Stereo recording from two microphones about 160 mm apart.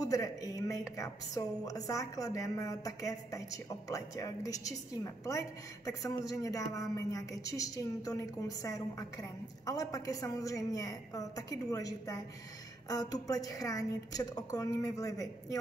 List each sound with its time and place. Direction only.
0.0 s a woman's voice: 20° left (ahead or behind)